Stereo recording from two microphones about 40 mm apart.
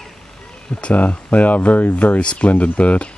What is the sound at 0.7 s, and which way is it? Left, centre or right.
Speech, left.